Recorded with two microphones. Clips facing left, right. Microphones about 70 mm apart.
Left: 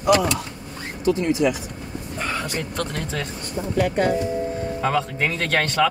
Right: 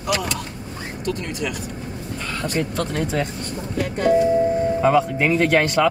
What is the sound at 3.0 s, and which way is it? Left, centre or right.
Speech, centre.